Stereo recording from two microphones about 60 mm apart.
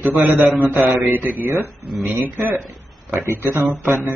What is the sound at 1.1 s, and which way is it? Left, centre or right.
Speech, right.